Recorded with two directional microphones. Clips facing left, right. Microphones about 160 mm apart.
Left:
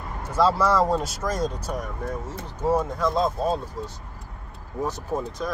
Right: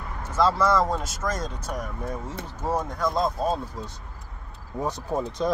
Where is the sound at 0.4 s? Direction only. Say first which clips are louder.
Left 1 dB; 10° left (ahead or behind).